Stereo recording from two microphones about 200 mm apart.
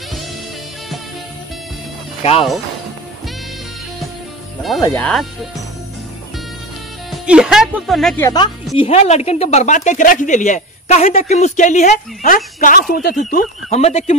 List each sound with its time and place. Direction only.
4.8 s speech: 5° left (ahead or behind)
7.1 s speech: 5° right (ahead or behind)
8.2 s a woman's voice: 20° left (ahead or behind)
8.7 s speech: 30° left (ahead or behind)